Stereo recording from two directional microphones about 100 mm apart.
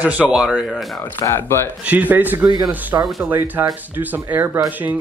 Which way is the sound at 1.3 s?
25° left (ahead or behind).